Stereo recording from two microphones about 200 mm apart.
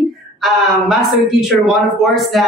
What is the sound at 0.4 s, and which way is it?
Speech, centre (ahead or behind).